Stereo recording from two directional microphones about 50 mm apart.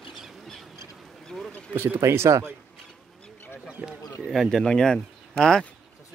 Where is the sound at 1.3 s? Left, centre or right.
Centre.